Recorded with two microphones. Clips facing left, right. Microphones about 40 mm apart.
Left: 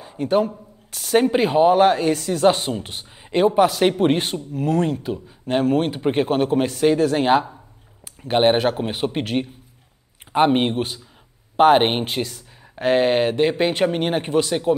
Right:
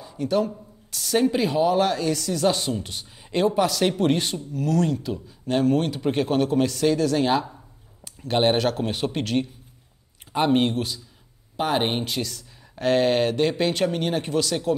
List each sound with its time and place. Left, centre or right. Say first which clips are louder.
0.0 s a man's voice: left 4 dB; left
11.5 s speech: left 9 dB; left